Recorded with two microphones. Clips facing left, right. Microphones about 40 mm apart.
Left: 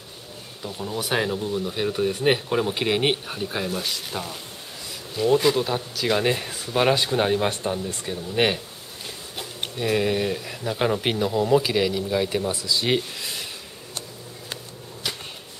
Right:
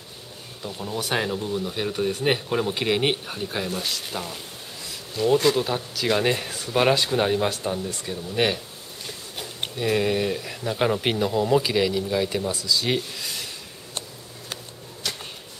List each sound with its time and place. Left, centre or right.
0.6 s speech: centre
9.4 s speech: centre
12.4 s speech: left
15.0 s a sound: centre